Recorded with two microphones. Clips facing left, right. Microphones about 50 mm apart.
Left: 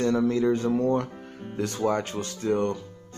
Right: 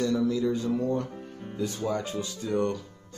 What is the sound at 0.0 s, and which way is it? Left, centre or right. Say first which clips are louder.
Speech: left 3 dB; left.